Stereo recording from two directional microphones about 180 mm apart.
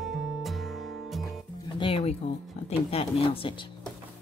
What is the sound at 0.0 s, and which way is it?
Music, centre (ahead or behind).